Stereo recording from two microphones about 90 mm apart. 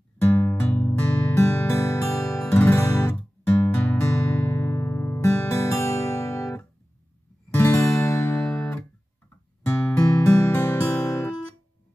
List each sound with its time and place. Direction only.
0.2 s music: 20° left (ahead or behind)
1.3 s music: 25° left (ahead or behind)
3.2 s music: 15° left (ahead or behind)
4.5 s music: 25° left (ahead or behind)
9.9 s music: 10° left (ahead or behind)
10.8 s music: 30° left (ahead or behind)